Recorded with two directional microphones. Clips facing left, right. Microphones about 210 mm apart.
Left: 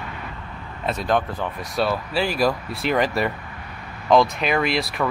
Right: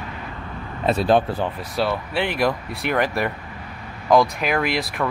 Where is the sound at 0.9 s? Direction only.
30° right (ahead or behind).